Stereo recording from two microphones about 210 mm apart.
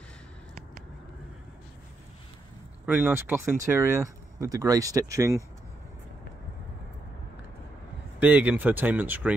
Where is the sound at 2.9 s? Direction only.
10° right (ahead or behind).